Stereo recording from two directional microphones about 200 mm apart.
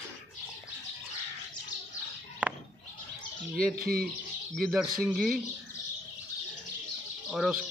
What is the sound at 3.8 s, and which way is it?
Speech, 45° right (ahead or behind).